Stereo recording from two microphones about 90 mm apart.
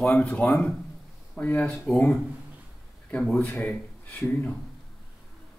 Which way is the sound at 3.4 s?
20° left (ahead or behind).